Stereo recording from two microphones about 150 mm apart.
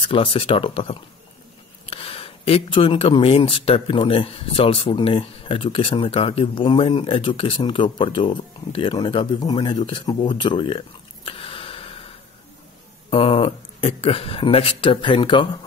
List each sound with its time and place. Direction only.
0.0 s speech: 35° left (ahead or behind)
11.2 s a sound: 35° left (ahead or behind)
13.1 s speech: 35° left (ahead or behind)